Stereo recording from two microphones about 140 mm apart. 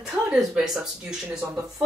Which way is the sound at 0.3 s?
5° right (ahead or behind).